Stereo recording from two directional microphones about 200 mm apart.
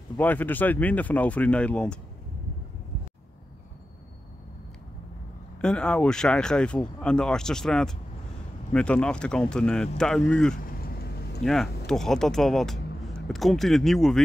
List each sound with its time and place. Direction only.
0.2 s speech: 10° left (ahead or behind)
5.6 s speech: 5° left (ahead or behind)
10.8 s a sound: 50° left (ahead or behind)
11.4 s speech: centre (ahead or behind)